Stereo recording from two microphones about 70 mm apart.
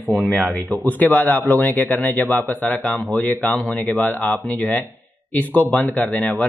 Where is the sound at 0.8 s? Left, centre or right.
Left.